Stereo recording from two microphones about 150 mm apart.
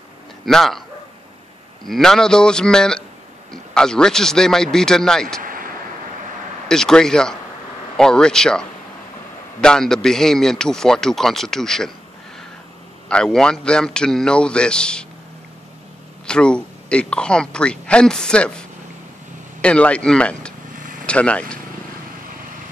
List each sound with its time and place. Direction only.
0.5 s a man's voice: centre (ahead or behind)
1.9 s a man's voice: 5° left (ahead or behind)
5.4 s vehicle: 65° right (ahead or behind)
6.7 s a man's voice: 5° left (ahead or behind)
13.1 s a man's voice: 5° left (ahead or behind)
16.3 s speech: 5° left (ahead or behind)
20.7 s vehicle: 60° right (ahead or behind)
21.0 s speech: 5° left (ahead or behind)